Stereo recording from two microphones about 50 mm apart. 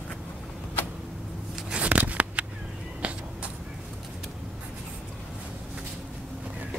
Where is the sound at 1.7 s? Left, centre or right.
Right.